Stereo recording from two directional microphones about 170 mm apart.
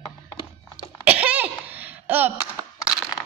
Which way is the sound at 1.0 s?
10° right (ahead or behind).